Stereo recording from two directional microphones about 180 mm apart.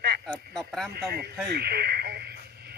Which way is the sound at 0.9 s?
60° right (ahead or behind).